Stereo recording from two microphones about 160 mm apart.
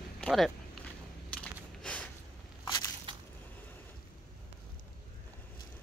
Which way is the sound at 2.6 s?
25° left (ahead or behind).